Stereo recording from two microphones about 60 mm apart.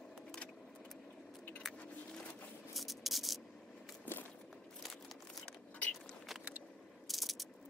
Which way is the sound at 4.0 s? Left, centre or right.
Left.